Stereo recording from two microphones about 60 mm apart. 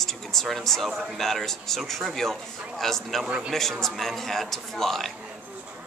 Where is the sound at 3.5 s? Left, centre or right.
Centre.